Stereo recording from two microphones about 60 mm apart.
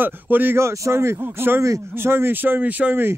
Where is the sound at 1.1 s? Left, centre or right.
Right.